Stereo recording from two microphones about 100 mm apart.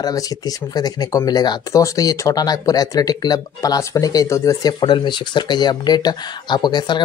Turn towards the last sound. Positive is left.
turn(degrees=45)  # may be behind; listen again after turning